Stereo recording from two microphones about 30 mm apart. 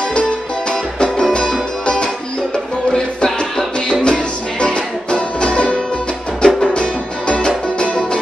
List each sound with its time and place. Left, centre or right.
0.7 s music: left
4.0 s music: left